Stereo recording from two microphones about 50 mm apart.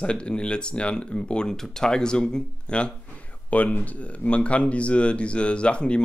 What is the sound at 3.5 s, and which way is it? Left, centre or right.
Speech, left.